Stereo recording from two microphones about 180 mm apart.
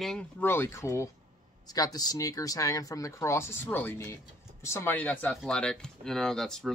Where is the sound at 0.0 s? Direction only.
5° left (ahead or behind).